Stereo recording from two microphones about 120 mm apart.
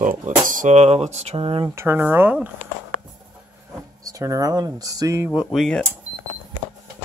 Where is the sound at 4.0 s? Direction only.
30° right (ahead or behind).